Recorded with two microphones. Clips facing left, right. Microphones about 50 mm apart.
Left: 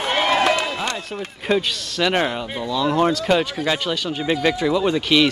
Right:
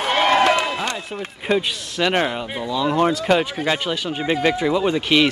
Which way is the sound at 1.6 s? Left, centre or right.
Centre.